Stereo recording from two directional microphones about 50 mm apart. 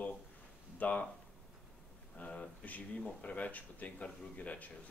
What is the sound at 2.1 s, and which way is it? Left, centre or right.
Speech, left.